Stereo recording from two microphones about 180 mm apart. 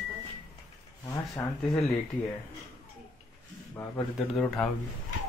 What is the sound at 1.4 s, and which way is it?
Speech, 15° left (ahead or behind).